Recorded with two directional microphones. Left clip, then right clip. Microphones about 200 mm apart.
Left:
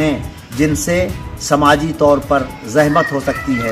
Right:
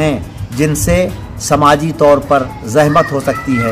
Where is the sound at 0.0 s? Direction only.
15° right (ahead or behind).